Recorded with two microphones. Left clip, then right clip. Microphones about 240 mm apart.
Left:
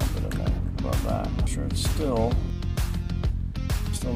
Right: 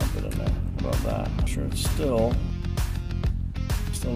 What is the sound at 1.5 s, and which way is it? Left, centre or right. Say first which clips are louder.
Speech: right 1 dB; right.